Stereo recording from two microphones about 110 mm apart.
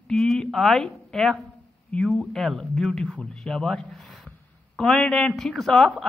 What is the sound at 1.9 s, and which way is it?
Speech, 5° left (ahead or behind).